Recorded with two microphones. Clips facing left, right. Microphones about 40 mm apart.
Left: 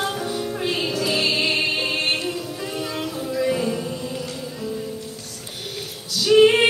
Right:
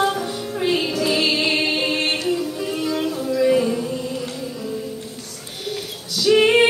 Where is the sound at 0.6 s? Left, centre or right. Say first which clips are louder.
Right 6 dB; centre.